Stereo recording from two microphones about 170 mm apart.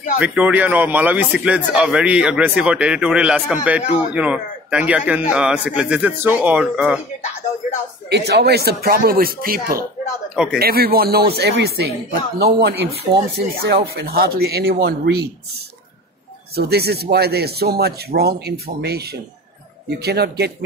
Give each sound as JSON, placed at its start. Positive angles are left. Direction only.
{"t": 0.2, "sound": "a man's voice", "side_deg": -5}
{"t": 8.1, "sound": "speech", "side_deg": -75}
{"t": 10.3, "sound": "speech", "side_deg": -5}
{"t": 10.6, "sound": "speech", "side_deg": -65}
{"t": 14.7, "sound": "speech", "side_deg": -75}
{"t": 16.5, "sound": "speech", "side_deg": -70}